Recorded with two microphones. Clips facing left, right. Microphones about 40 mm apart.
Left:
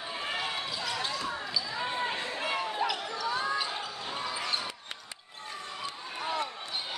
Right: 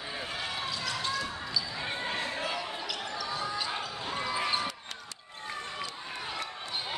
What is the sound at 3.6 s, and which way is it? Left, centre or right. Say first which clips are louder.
Basketball bounce: right 1 dB; centre.